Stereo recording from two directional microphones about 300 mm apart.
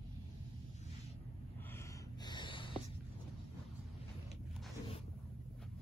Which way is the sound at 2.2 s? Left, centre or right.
Centre.